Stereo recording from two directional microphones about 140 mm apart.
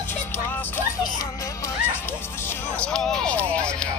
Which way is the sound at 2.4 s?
15° left (ahead or behind).